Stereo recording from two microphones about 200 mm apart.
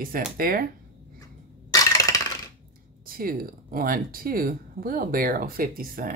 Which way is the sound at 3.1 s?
45° right (ahead or behind).